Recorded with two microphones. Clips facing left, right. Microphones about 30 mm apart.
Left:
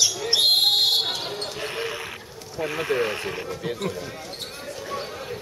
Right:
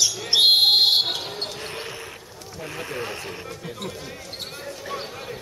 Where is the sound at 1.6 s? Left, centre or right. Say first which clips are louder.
Left 4 dB; centre.